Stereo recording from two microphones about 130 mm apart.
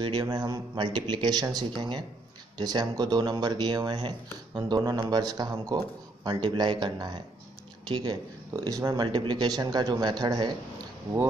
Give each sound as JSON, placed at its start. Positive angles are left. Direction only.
{"t": 0.0, "sound": "speech", "side_deg": -35}